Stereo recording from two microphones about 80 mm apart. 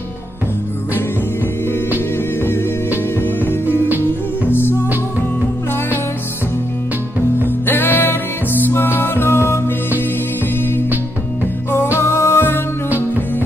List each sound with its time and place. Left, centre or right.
3.2 s music: left
7.4 s music: left
12.0 s music: left